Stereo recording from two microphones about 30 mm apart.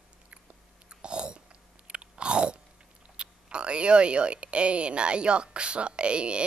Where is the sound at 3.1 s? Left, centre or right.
Right.